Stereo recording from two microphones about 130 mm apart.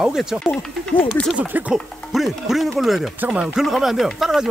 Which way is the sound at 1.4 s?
10° right (ahead or behind).